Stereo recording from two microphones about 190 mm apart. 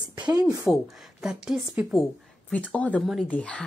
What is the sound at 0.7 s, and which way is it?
Speech, centre (ahead or behind).